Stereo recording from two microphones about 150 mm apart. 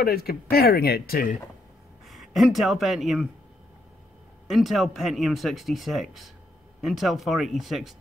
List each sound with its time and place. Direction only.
0.0 s speech: 90° left
2.0 s speech: centre (ahead or behind)
4.5 s speech: centre (ahead or behind)